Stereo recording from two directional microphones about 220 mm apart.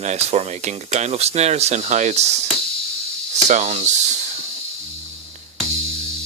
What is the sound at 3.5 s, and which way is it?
Speech, 30° right (ahead or behind).